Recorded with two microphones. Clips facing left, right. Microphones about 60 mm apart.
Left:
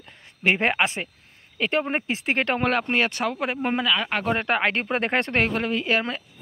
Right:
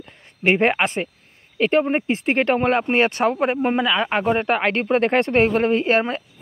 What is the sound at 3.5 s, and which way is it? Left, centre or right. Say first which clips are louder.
Speech: right 4 dB; centre.